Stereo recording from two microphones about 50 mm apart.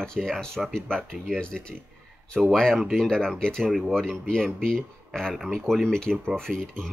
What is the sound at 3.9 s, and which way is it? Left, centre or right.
Speech, centre.